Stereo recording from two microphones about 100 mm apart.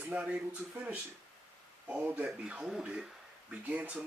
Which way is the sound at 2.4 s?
5° right (ahead or behind).